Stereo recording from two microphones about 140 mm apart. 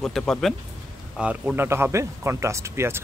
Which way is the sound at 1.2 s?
10° right (ahead or behind).